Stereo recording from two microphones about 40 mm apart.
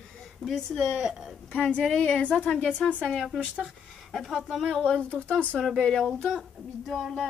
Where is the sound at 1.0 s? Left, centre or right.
Centre.